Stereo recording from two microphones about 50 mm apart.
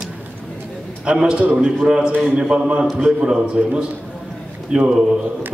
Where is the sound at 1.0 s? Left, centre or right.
Centre.